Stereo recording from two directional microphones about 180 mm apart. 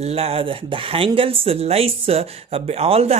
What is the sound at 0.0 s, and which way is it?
Speech, 35° right (ahead or behind).